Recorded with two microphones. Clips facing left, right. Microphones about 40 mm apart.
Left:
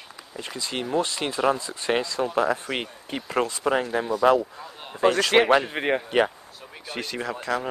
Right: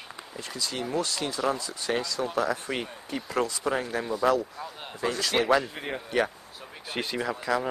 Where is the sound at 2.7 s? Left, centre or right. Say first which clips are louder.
Left 2 dB; left.